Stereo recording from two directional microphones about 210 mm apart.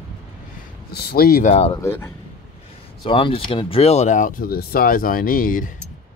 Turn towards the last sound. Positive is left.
turn(degrees=40)  # may be behind; listen again after turning